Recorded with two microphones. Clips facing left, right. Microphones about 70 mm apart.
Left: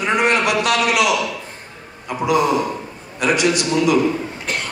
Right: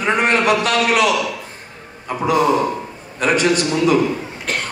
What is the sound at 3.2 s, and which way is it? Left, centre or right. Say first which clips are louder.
Speech: right 1 dB; right.